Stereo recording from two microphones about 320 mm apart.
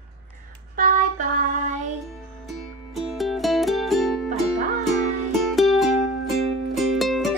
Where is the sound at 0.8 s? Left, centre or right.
Right.